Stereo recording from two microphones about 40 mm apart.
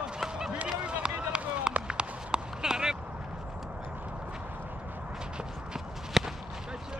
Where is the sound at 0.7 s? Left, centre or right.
Right.